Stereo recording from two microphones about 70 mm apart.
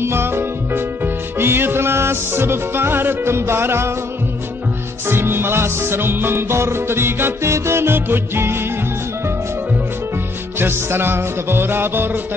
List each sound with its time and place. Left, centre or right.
0.0 s music: right
5.0 s music: right
10.6 s music: right